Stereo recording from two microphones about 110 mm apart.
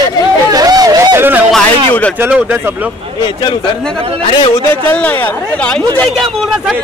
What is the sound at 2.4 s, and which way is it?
Speech, 20° right (ahead or behind).